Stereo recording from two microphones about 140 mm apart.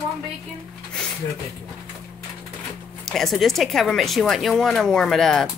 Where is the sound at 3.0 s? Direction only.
Centre (ahead or behind).